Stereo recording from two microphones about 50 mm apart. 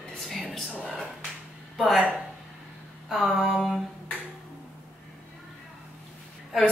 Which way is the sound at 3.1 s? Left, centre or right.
Centre.